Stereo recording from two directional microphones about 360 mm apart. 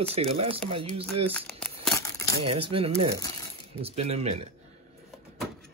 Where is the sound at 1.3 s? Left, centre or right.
Centre.